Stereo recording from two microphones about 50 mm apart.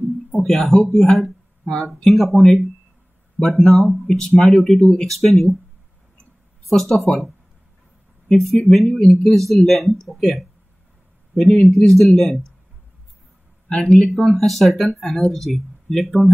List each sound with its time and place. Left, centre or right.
0.3 s speech: centre
4.7 s speech: left
5.0 s speech: centre
6.7 s speech: centre
13.7 s speech: centre